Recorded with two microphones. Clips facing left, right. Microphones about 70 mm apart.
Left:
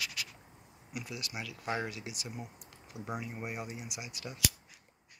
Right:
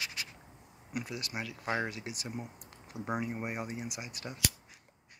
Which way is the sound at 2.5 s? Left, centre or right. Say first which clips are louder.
Right 2 dB; right.